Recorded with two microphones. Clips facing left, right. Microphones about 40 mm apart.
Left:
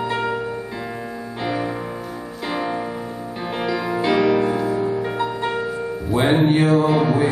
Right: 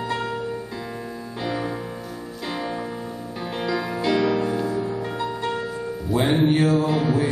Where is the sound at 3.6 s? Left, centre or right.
Centre.